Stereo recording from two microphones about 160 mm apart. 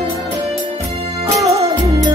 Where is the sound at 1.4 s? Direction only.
40° right (ahead or behind).